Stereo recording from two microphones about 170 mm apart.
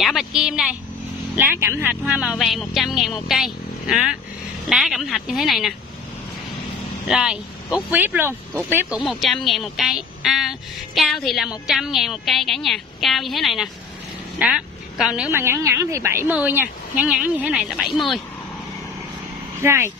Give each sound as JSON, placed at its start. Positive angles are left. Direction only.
{"t": 0.0, "sound": "a woman's voice", "side_deg": 0}
{"t": 7.1, "sound": "a woman's voice", "side_deg": -5}
{"t": 9.0, "sound": "a woman's voice", "side_deg": 0}
{"t": 15.2, "sound": "a woman's voice", "side_deg": -15}
{"t": 19.6, "sound": "a woman's voice", "side_deg": -15}